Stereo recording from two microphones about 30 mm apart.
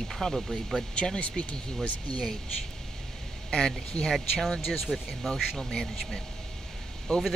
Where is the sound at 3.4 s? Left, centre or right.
Left.